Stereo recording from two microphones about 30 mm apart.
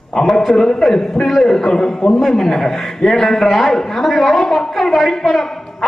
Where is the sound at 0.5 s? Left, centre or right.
Centre.